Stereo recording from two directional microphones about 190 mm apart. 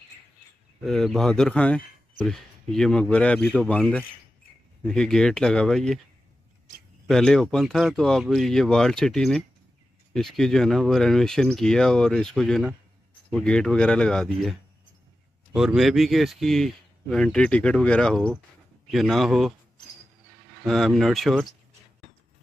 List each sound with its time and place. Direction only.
0.8 s speech: centre (ahead or behind)
7.1 s speech: centre (ahead or behind)
20.6 s speech: centre (ahead or behind)